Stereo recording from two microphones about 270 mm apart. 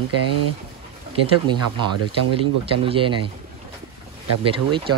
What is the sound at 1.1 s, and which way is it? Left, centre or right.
Speech, centre.